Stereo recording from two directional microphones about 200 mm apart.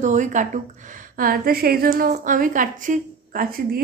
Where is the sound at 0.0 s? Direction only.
40° right (ahead or behind).